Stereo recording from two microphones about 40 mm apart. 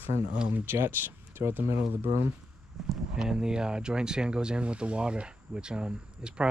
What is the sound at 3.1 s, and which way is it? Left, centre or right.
Speech, centre.